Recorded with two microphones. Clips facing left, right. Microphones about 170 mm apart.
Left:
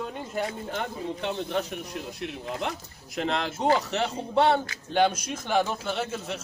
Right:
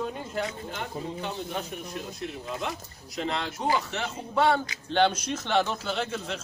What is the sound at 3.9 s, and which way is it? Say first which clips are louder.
Speech: left 5 dB; 35° left (ahead or behind).